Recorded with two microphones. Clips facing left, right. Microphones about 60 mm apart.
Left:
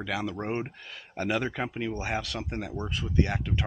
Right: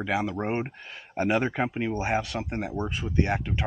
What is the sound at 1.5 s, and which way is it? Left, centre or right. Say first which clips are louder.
Speech: right 4 dB; right.